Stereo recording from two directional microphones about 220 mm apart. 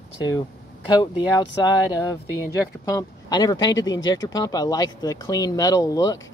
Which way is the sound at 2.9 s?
15° left (ahead or behind).